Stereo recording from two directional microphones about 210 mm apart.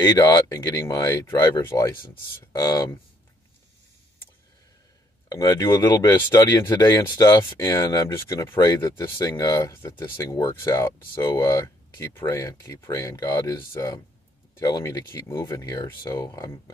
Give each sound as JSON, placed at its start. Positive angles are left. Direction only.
{"t": 0.1, "sound": "speech", "side_deg": 15}
{"t": 5.3, "sound": "speech", "side_deg": 15}